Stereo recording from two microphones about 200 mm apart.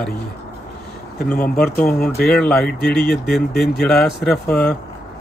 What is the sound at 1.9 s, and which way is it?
Speech, 45° left (ahead or behind).